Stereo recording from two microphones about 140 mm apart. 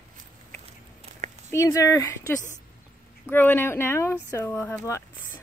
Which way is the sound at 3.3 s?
15° left (ahead or behind).